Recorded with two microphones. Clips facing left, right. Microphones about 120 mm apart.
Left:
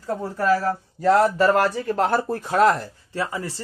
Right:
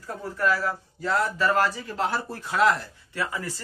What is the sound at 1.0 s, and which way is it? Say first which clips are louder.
Speech: left 8 dB; 60° left (ahead or behind).